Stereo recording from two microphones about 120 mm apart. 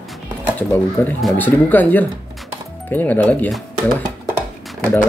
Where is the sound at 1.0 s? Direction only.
20° left (ahead or behind).